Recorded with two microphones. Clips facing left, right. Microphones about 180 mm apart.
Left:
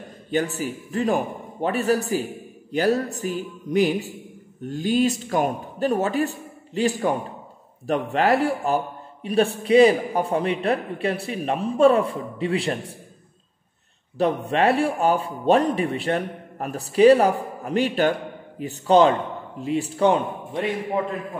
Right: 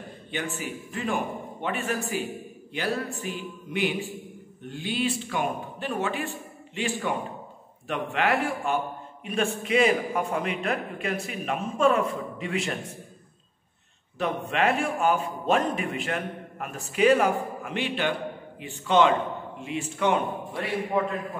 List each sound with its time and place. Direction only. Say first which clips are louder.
0.3 s a man's voice: left 8 dB; 40° left (ahead or behind)
14.1 s a man's voice: left 6 dB; 35° left (ahead or behind)